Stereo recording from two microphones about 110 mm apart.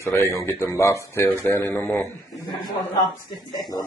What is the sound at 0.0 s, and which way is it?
Speech, 25° left (ahead or behind).